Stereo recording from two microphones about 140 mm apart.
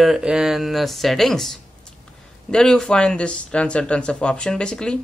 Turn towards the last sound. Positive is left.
turn(degrees=5)  # may be behind; listen again after turning